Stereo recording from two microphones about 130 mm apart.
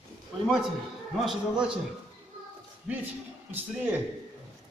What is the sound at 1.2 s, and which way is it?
Speech, 5° right (ahead or behind).